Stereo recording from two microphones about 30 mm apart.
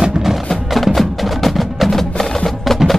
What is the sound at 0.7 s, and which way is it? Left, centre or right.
Wood block, centre.